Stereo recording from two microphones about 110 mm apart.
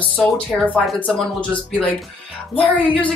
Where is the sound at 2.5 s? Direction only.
15° left (ahead or behind).